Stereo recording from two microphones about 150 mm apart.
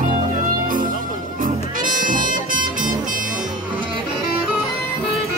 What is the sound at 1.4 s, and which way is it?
Music, 60° right (ahead or behind).